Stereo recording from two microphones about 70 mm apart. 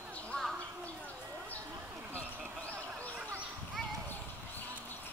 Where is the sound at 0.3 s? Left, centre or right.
Centre.